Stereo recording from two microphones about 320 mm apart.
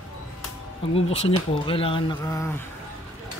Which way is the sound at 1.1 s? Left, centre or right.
Centre.